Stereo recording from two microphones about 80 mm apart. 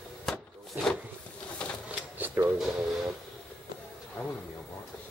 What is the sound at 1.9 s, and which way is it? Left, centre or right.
Drawer open or close, right.